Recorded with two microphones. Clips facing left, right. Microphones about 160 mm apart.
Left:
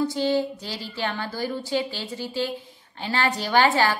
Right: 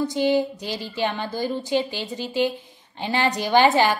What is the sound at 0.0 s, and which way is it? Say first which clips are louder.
A woman's voice: right 2 dB; 20° right (ahead or behind).